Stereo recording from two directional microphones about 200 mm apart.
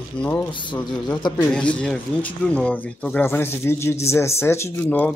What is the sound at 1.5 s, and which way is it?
Speech, 5° left (ahead or behind).